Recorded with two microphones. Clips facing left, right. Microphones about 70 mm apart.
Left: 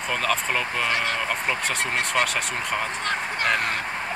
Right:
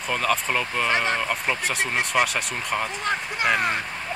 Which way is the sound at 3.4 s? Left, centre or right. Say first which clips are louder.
Right 2 dB; centre.